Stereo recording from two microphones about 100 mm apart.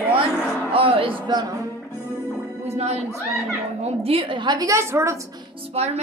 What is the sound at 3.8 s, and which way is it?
Speech, 75° right (ahead or behind).